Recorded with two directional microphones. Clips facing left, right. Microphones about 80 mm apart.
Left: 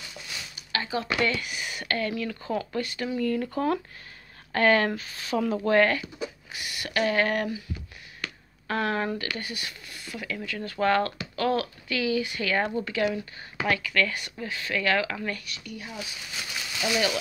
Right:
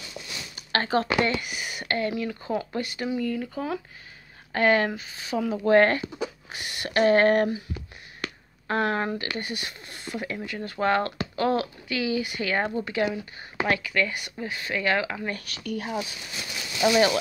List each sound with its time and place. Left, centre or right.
0.6 s a sound: right
1.2 s speech: right
3.3 s speech: centre
4.5 s speech: centre
5.7 s speech: right
8.6 s speech: right
15.4 s speech: right